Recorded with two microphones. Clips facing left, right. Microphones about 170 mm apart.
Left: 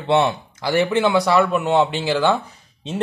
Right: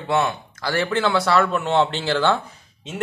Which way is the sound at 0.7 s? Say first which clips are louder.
Left 4 dB; 15° left (ahead or behind).